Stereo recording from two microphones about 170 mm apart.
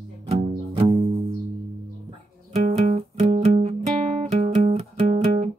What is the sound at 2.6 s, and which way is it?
Music, 40° right (ahead or behind).